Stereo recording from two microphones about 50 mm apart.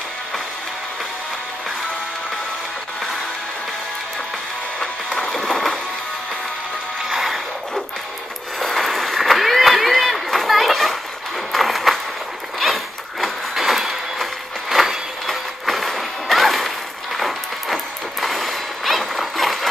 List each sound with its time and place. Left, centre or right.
4.7 s music: left
5.4 s music: centre
7.1 s music: centre
8.5 s a sound: centre
14.7 s vehicle: centre
18.2 s a sound: centre